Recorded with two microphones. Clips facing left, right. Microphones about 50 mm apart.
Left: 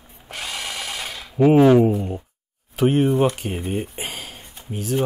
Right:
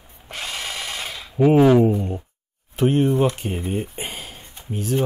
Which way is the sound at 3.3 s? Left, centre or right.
Centre.